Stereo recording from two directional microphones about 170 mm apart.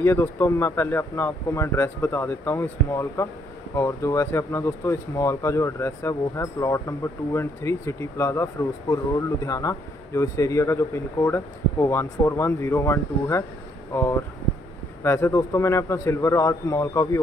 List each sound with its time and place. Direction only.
0.0 s speech: 15° left (ahead or behind)